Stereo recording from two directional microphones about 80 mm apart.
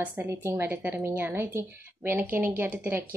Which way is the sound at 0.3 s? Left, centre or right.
Right.